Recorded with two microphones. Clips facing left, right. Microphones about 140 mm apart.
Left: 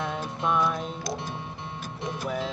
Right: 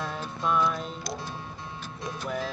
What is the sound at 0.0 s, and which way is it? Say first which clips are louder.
Music: left 2 dB; 20° left (ahead or behind).